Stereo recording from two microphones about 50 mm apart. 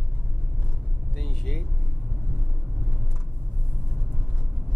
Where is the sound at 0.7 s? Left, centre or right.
Centre.